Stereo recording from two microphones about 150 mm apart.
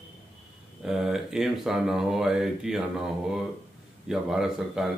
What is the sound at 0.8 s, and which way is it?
Speech, 5° right (ahead or behind).